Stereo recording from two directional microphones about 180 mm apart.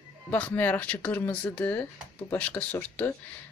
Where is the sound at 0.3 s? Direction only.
10° left (ahead or behind).